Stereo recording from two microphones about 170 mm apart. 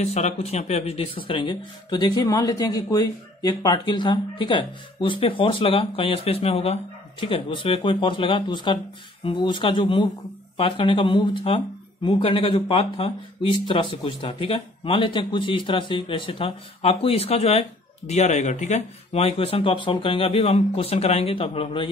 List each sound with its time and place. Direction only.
0.0 s speech: 40° left (ahead or behind)